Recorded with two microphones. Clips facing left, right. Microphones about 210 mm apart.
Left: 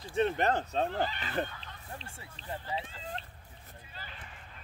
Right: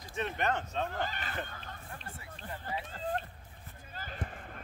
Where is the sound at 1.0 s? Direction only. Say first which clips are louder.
Left 3 dB; 45° right (ahead or behind).